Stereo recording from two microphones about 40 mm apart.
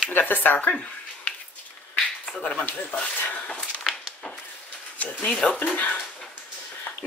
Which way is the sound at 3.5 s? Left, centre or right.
Centre.